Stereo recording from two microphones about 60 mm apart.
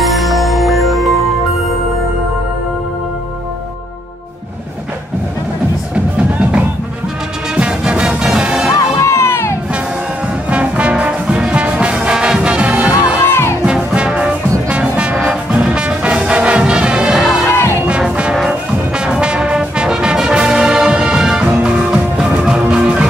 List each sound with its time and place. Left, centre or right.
0.0 s music: centre
7.5 s music: centre
8.9 s crowd: left
10.5 s brass instrument: right
13.2 s music: left
13.7 s music: centre
17.5 s music: left
18.5 s music: centre